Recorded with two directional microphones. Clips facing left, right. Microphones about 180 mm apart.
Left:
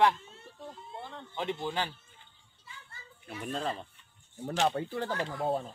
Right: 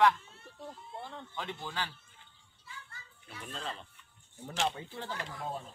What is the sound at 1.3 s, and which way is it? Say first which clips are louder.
Speech: left 8 dB; 20° left (ahead or behind).